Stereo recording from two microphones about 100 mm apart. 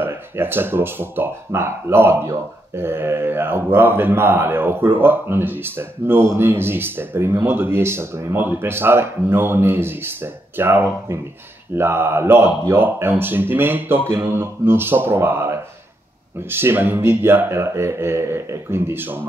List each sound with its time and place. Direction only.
0.0 s speech: 20° right (ahead or behind)